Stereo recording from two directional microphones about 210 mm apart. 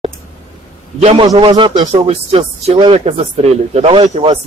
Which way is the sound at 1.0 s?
30° right (ahead or behind).